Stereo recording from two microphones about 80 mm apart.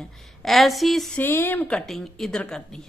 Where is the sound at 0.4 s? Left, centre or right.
Centre.